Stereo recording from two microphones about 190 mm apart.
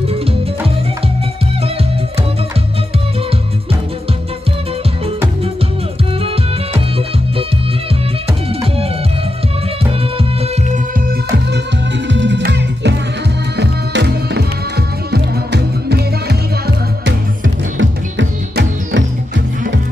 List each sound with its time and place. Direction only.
12.1 s music: 70° right (ahead or behind)
17.7 s music: 75° right (ahead or behind)